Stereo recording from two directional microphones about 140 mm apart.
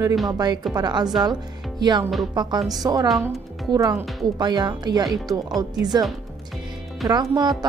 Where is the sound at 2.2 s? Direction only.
30° right (ahead or behind).